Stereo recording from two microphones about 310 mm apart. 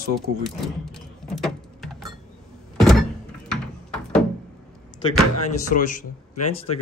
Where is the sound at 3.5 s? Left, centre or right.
Centre.